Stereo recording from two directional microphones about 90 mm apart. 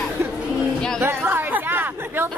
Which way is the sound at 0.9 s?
25° right (ahead or behind).